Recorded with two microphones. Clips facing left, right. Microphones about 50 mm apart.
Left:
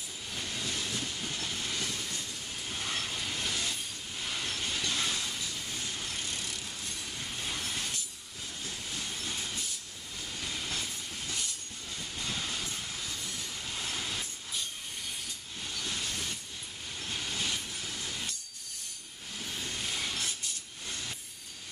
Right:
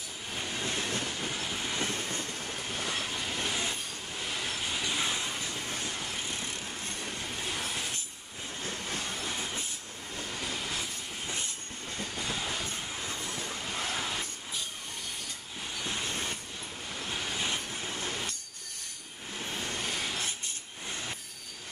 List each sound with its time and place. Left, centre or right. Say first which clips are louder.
0.3 s train: right 3 dB; right
1.3 s train: right 2 dB; right
2.7 s train: right 1 dB; centre
3.3 s train: right 3 dB; right
4.2 s train: right 1 dB; centre; by 6.0 s right
6.1 s train: right 2 dB; right
8.6 s train: right 4 dB; right
9.3 s train: right 2 dB; right
10.1 s train: right 3 dB; right
10.4 s train: even; right
12.6 s train: right 2 dB; right
15.7 s train: right 2 dB; right
19.3 s a sound: right 3 dB; right
20.2 s train: right 1 dB; right